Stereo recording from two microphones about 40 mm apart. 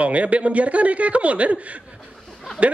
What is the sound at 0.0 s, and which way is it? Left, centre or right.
Speech, right.